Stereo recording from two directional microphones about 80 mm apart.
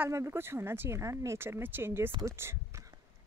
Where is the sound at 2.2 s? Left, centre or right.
Right.